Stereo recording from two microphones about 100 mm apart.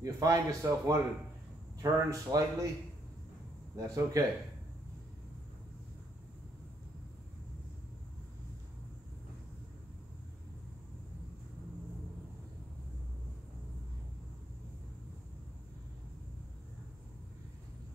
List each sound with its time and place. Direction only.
0.0 s speech: 35° right (ahead or behind)
3.7 s speech: 35° right (ahead or behind)